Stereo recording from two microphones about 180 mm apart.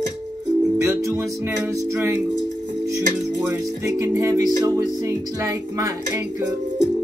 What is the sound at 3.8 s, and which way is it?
Music, 15° right (ahead or behind).